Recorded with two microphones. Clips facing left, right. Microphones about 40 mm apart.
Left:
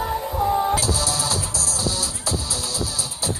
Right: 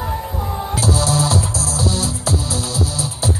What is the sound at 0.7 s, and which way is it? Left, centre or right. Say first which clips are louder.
Music: right 5 dB; centre.